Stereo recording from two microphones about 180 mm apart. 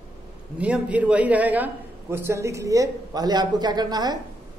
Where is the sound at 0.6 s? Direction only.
5° right (ahead or behind).